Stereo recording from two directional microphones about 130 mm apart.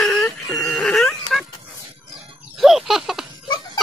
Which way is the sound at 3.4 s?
35° left (ahead or behind).